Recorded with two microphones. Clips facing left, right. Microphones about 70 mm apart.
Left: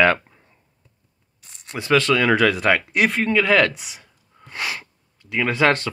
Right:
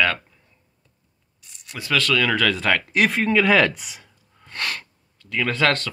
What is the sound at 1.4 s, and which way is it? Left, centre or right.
Speech, left.